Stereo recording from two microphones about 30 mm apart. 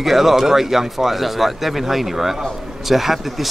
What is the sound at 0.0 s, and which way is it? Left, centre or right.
Speech, centre.